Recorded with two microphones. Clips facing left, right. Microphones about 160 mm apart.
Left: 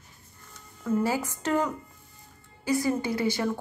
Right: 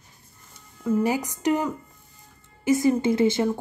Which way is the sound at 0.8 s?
15° right (ahead or behind).